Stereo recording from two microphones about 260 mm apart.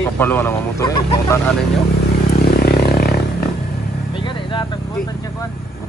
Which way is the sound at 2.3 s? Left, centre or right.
Left.